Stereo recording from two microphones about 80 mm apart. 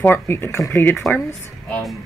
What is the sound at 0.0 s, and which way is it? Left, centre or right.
Speech, left.